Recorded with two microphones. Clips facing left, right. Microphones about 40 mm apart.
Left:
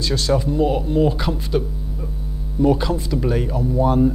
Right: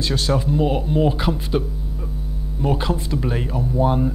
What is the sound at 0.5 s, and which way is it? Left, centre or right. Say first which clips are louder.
Speech: left 1 dB; centre.